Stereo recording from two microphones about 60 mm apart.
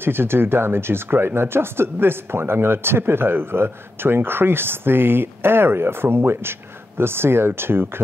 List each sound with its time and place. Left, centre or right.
0.0 s speech: right